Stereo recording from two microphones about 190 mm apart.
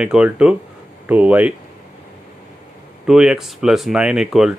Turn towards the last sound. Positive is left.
turn(degrees=-5)  # may be behind; listen again after turning